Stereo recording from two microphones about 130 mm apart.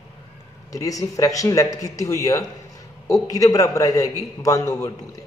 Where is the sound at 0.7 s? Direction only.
25° left (ahead or behind).